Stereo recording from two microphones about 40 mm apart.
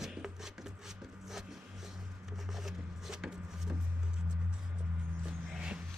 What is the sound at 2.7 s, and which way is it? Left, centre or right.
Wood, centre.